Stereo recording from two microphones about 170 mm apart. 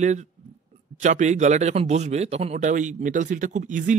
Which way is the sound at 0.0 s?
45° right (ahead or behind).